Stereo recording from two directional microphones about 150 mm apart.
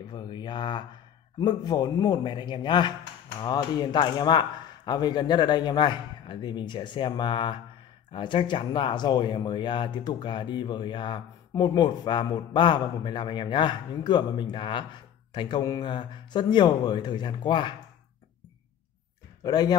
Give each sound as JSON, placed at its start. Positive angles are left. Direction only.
{"t": 0.1, "sound": "speech", "side_deg": 30}
{"t": 19.4, "sound": "speech", "side_deg": 25}